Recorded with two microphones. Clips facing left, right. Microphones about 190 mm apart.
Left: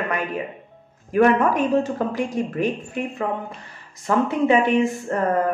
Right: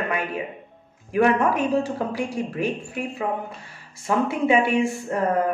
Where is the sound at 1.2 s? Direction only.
10° right (ahead or behind).